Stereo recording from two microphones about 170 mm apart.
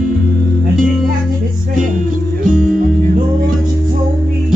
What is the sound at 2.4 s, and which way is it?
Music, 50° right (ahead or behind).